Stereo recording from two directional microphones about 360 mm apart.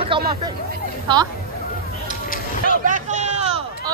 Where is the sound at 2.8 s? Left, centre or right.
Centre.